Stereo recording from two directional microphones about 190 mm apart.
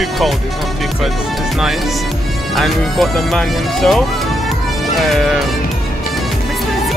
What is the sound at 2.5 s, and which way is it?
Speech, centre (ahead or behind).